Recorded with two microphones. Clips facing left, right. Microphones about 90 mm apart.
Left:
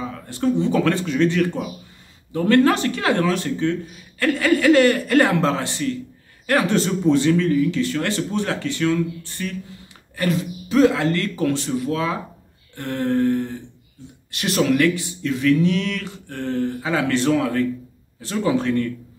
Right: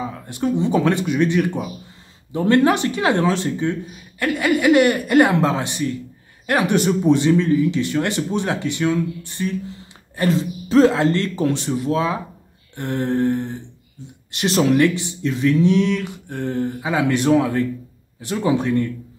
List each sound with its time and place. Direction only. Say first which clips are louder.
0.0 s speech: left 1 dB; 15° right (ahead or behind)